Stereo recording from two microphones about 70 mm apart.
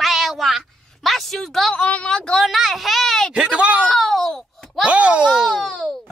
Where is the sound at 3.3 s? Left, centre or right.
Centre.